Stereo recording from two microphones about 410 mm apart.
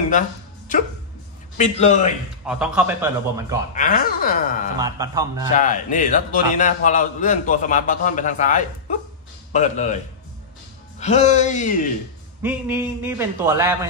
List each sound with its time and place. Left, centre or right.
1.6 s a man's voice: centre
2.4 s a man's voice: centre
3.7 s speech: centre
4.7 s a man's voice: centre
5.5 s a man's voice: centre
11.0 s a man's voice: centre
12.4 s a man's voice: centre